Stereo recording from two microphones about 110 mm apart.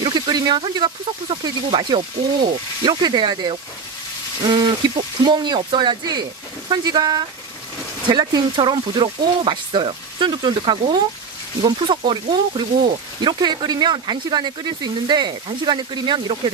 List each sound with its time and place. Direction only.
0.0 s speech: 40° right (ahead or behind)